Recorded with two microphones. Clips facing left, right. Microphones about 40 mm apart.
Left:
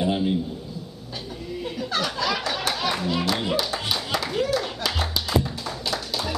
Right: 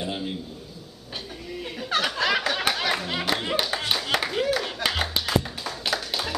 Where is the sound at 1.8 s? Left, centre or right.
Right.